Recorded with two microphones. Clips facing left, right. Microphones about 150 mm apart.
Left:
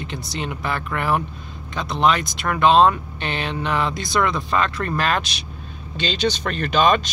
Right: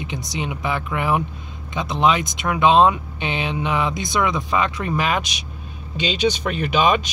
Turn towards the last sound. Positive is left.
turn(degrees=-10)  # may be behind; listen again after turning